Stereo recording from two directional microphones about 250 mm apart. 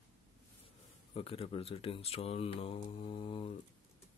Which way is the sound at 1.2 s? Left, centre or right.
Left.